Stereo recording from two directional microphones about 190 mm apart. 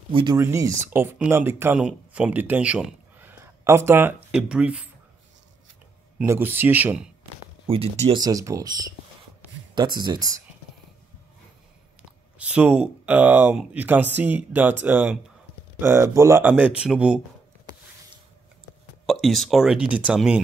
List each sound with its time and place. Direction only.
0.1 s speech: 25° right (ahead or behind)
0.4 s speech: 15° right (ahead or behind)
6.1 s speech: 10° right (ahead or behind)
7.6 s speech: 30° right (ahead or behind)
12.0 s speech: 5° right (ahead or behind)
19.2 s speech: centre (ahead or behind)